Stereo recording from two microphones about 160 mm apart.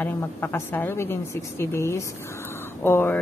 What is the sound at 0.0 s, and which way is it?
A woman's voice, 15° left (ahead or behind).